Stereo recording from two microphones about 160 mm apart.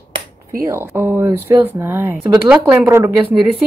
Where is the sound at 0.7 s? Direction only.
15° right (ahead or behind).